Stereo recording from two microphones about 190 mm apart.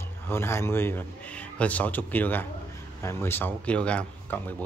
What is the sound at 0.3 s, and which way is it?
Speech, 15° left (ahead or behind).